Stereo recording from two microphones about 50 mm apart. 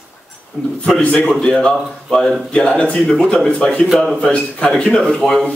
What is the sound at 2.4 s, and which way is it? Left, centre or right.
Speech, centre.